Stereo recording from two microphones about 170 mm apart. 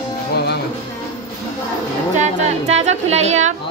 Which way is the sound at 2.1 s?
45° right (ahead or behind).